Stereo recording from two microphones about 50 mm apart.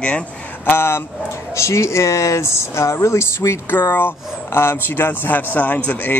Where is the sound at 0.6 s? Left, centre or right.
Left.